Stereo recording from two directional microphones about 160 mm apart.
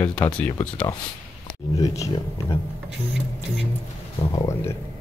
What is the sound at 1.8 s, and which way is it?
Speech, 20° left (ahead or behind).